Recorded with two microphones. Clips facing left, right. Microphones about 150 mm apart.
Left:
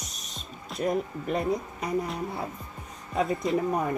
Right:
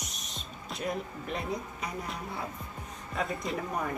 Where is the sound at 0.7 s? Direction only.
45° left (ahead or behind).